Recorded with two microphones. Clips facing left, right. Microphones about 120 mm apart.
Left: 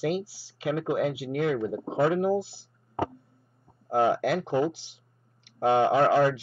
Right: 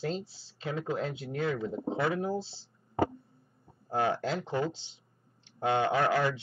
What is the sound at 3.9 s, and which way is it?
Speech, 20° left (ahead or behind).